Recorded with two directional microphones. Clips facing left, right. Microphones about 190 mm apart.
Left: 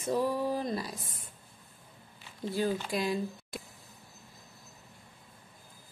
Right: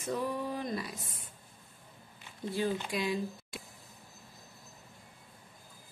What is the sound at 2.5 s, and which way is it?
A woman's voice, 40° left (ahead or behind).